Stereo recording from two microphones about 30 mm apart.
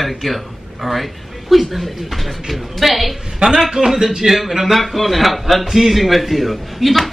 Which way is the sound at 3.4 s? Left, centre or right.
Right.